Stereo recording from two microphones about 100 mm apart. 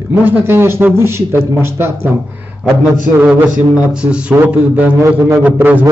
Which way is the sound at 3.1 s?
15° right (ahead or behind).